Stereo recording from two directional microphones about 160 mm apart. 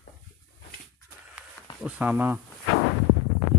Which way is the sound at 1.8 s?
10° right (ahead or behind).